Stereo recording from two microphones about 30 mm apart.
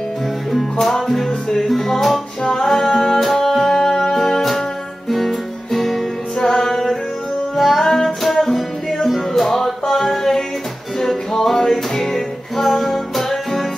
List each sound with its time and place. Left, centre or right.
0.5 s music: centre
6.4 s music: centre
7.8 s music: centre